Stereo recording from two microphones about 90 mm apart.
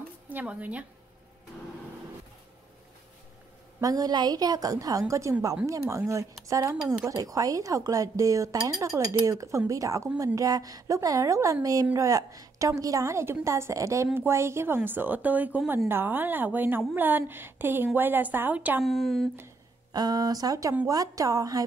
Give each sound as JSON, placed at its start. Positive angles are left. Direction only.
{"t": 0.3, "sound": "speech", "side_deg": -20}
{"t": 3.8, "sound": "a woman's voice", "side_deg": -45}
{"t": 18.9, "sound": "speech", "side_deg": 0}
{"t": 19.9, "sound": "a woman's voice", "side_deg": -45}